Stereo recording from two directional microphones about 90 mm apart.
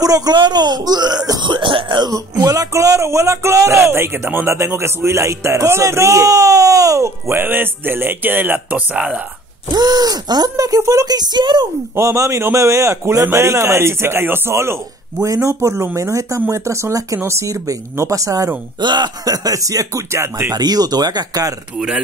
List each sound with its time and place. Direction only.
0.0 s speech: 45° right (ahead or behind)
1.5 s throat clearing: 70° right (ahead or behind)
2.1 s speech: 40° right (ahead or behind); by 9.2 s 15° right (ahead or behind)
9.8 s speech: 50° right (ahead or behind)
10.5 s speech: 40° right (ahead or behind); by 11.6 s 55° right (ahead or behind)
11.9 s speech: 35° right (ahead or behind)
18.8 s speech: 55° right (ahead or behind); by 20.5 s 30° right (ahead or behind)
20.5 s speech: 50° right (ahead or behind)
21.7 s speech: 5° right (ahead or behind)